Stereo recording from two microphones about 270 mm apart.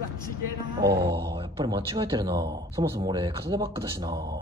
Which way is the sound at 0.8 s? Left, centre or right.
Right.